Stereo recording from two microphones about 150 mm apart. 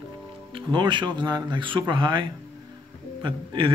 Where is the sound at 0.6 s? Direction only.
30° right (ahead or behind).